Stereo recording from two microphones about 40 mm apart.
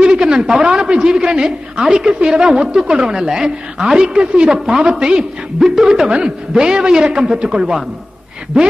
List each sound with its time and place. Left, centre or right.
0.0 s a man's voice: centre